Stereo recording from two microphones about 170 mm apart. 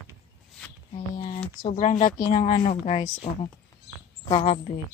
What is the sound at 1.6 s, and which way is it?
Speech, 40° left (ahead or behind).